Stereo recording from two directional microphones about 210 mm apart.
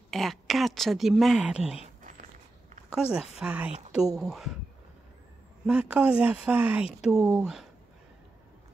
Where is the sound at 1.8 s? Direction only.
35° right (ahead or behind).